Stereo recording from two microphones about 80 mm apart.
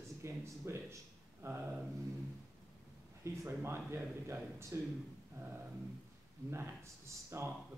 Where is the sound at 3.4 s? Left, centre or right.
Right.